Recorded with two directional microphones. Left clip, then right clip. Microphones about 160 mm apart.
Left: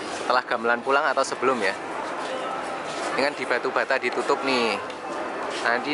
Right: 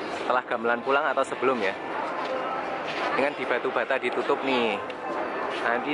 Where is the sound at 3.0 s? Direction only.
15° right (ahead or behind).